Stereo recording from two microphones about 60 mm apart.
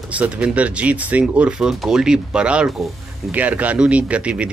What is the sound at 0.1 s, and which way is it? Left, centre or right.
Speech, right.